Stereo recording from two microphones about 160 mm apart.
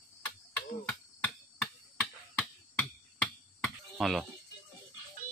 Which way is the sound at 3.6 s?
Centre (ahead or behind).